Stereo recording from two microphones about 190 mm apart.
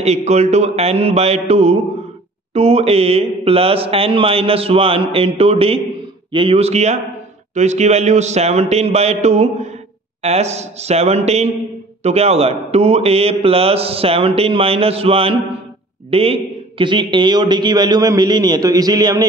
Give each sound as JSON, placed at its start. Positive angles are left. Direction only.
{"t": 0.0, "sound": "a man's voice", "side_deg": -35}